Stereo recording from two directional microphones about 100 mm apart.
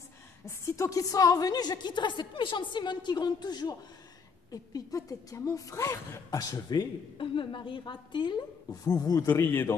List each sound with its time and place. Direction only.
0.5 s a woman's voice: 30° left (ahead or behind)
7.2 s a woman's voice: 55° left (ahead or behind)
8.8 s speech: 40° left (ahead or behind)
9.3 s a man's voice: 25° left (ahead or behind)